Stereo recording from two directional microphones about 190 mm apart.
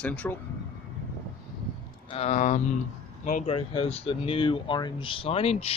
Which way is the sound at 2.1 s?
35° left (ahead or behind).